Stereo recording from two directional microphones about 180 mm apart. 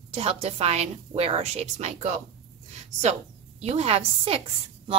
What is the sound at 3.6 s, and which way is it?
Speech, 35° right (ahead or behind).